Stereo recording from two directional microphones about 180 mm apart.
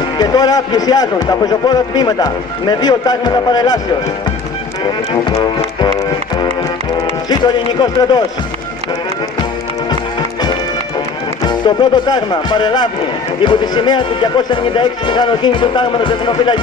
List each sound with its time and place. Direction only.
0.2 s a man's voice: 20° left (ahead or behind)
5.2 s a man's voice: 25° left (ahead or behind)
7.2 s a man's voice: 20° left (ahead or behind)
11.4 s a man's voice: 25° left (ahead or behind)